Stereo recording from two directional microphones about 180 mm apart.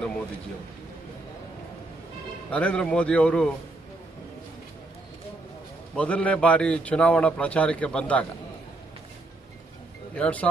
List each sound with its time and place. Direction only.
2.5 s a man's voice: 5° left (ahead or behind)
5.9 s a man's voice: 5° left (ahead or behind)
10.1 s a man's voice: 5° left (ahead or behind)